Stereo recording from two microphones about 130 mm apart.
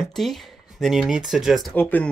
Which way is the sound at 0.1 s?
Centre (ahead or behind).